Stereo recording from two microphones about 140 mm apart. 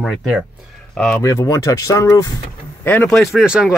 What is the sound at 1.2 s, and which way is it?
Speech, 25° left (ahead or behind).